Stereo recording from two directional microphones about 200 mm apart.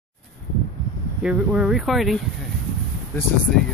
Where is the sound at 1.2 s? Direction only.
5° right (ahead or behind).